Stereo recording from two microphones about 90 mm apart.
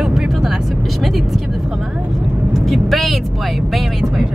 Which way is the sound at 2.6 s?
5° right (ahead or behind).